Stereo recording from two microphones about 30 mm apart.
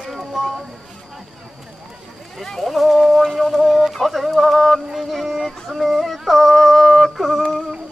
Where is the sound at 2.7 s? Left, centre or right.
Centre.